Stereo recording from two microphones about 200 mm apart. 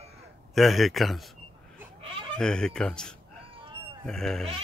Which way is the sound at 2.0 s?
25° right (ahead or behind).